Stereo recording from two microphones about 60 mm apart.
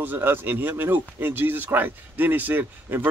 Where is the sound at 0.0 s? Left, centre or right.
Right.